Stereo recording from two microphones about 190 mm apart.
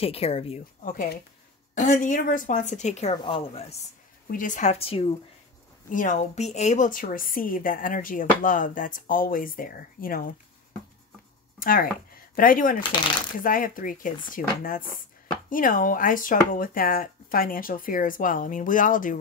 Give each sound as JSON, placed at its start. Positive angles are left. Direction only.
{"t": 0.0, "sound": "a woman's voice", "side_deg": 30}
{"t": 0.8, "sound": "a woman's voice", "side_deg": 50}
{"t": 4.3, "sound": "a woman's voice", "side_deg": 45}
{"t": 5.9, "sound": "a woman's voice", "side_deg": 40}
{"t": 11.6, "sound": "a woman's voice", "side_deg": 50}